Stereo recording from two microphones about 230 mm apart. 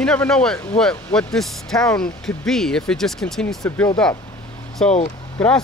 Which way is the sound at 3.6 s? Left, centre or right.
Centre.